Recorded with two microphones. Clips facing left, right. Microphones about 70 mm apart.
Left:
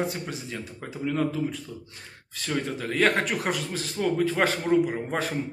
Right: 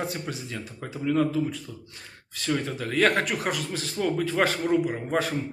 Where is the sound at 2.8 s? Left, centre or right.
Left; by 5.2 s centre.